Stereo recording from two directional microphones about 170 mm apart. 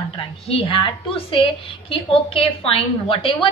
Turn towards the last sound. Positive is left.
turn(degrees=35)  # may be behind; listen again after turning